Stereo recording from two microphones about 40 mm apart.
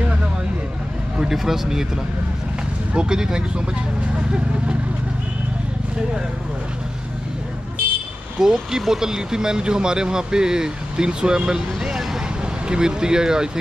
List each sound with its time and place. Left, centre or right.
1.3 s speech: centre
3.1 s speech: centre
8.4 s speech: centre